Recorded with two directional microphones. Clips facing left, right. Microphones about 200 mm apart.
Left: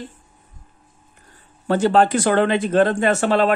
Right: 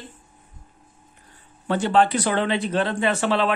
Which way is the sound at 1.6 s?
45° left (ahead or behind).